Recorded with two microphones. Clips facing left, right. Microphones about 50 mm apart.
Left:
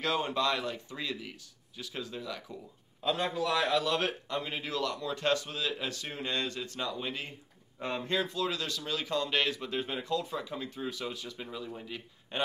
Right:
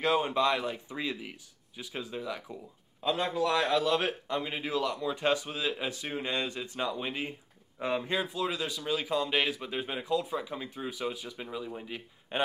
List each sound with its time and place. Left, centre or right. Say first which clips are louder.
0.0 s speech: right 3 dB; centre
3.1 s speech: right 2 dB; centre